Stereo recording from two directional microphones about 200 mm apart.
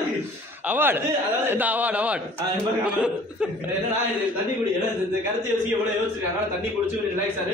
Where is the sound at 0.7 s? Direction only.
10° right (ahead or behind).